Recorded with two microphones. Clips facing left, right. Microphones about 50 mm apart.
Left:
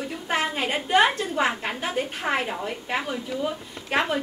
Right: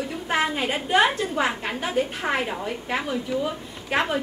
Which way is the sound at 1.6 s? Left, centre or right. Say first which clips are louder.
Right 2 dB; centre.